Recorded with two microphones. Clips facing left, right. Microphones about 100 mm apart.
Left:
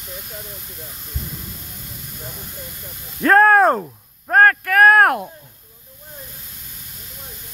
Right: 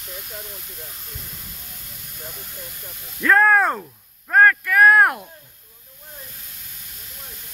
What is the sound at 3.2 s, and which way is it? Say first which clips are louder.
Speech: left 4 dB; 45° left (ahead or behind).